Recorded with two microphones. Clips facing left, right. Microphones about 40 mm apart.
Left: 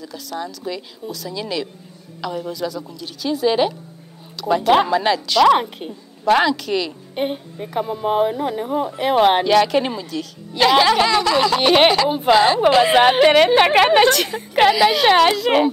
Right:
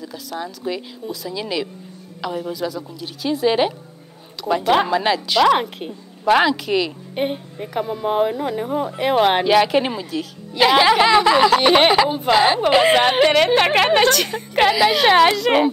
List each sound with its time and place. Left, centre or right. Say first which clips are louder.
0.0 s a woman's voice: even; centre
11.3 s a woman's voice: right 2 dB; centre
12.1 s speech: left 2 dB; centre